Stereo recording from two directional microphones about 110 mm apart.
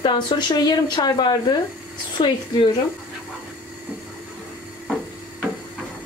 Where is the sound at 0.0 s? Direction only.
40° left (ahead or behind).